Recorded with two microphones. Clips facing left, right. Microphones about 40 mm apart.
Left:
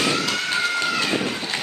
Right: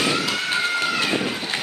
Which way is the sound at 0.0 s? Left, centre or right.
Centre.